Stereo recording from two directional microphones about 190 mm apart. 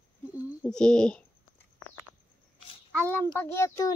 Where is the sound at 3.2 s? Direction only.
15° left (ahead or behind).